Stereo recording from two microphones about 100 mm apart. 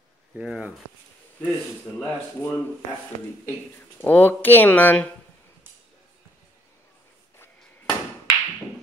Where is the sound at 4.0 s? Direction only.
20° left (ahead or behind).